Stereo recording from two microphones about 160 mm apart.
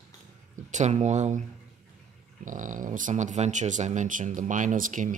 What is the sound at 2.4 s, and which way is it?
Speech, 55° right (ahead or behind).